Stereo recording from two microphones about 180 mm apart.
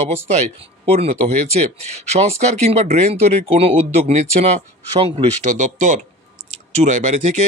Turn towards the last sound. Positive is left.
turn(degrees=-40)  # may be behind; listen again after turning